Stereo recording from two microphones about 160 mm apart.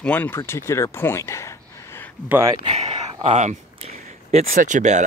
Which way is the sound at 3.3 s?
45° right (ahead or behind).